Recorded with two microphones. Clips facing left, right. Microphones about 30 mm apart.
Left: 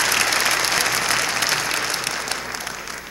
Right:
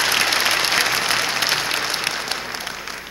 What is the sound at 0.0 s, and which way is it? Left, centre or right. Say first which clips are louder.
Applause: right 1 dB; right.